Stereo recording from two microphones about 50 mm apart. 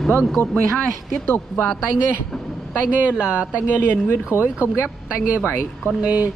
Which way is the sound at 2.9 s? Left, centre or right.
Right.